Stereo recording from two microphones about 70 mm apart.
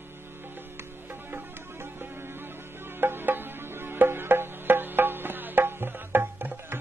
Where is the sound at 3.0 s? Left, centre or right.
Right.